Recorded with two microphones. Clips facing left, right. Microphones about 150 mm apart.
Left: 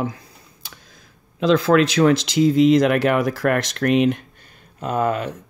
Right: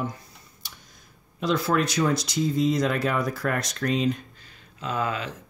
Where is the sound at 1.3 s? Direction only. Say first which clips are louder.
Left 8 dB; 90° left; by 4.2 s 70° left (ahead or behind).